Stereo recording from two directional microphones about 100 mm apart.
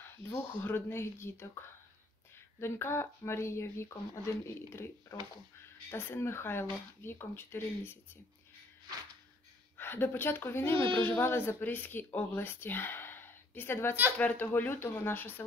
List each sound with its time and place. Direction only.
0.6 s speech: 20° left (ahead or behind)
2.6 s speech: 25° left (ahead or behind)
9.8 s speech: 20° left (ahead or behind)